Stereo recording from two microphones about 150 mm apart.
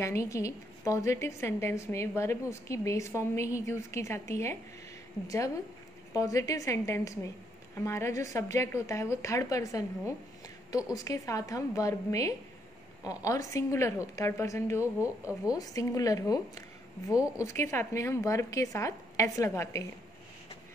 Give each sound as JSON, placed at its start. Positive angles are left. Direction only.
{"t": 0.0, "sound": "speech", "side_deg": 20}
{"t": 14.8, "sound": "speech", "side_deg": -10}
{"t": 15.5, "sound": "speech", "side_deg": 25}